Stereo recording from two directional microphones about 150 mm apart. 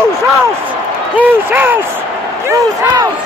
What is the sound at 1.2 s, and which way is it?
Speech, 15° right (ahead or behind).